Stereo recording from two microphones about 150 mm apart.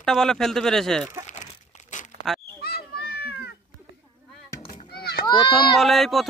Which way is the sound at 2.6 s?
90° left.